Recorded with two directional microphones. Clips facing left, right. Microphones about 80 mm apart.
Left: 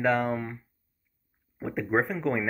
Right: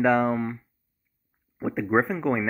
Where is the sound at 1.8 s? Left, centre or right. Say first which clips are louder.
Right 3 dB; centre.